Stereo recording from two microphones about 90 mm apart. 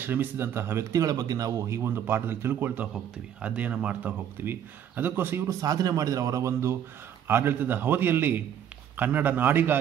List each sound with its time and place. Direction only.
0.0 s speech: 20° right (ahead or behind); by 1.8 s 40° right (ahead or behind)
1.8 s speech: 25° right (ahead or behind)
5.6 s speech: 45° right (ahead or behind); by 9.8 s 20° right (ahead or behind)